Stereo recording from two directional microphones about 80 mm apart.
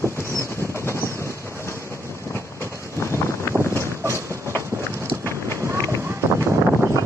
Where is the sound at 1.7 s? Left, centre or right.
Right.